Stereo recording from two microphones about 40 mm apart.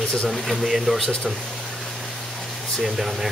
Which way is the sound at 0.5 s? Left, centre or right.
Centre.